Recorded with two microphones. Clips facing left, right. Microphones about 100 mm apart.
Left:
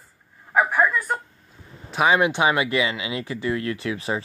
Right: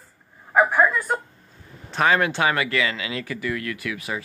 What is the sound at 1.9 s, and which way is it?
Speech, 15° left (ahead or behind).